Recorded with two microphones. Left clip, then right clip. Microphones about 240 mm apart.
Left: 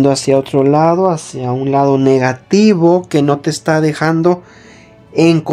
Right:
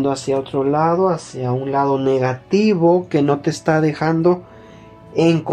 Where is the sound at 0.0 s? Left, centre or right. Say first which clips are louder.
Left 8 dB; left.